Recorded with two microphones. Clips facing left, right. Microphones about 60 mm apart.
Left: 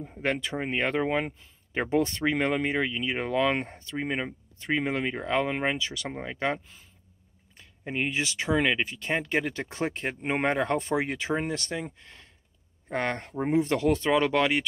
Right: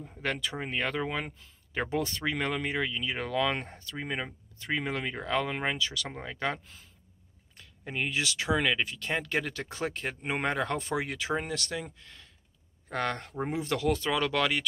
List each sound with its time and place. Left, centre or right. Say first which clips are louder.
0.2 s speech: left 4 dB; left